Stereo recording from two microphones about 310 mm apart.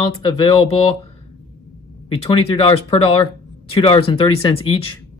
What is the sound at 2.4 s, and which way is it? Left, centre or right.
Speech, centre.